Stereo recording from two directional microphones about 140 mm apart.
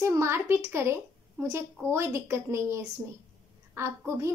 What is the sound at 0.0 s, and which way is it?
A woman's voice, 20° right (ahead or behind).